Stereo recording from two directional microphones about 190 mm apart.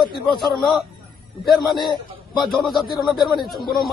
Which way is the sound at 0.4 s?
Centre (ahead or behind).